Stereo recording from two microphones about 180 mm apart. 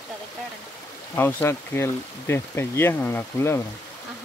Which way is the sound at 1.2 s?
15° left (ahead or behind).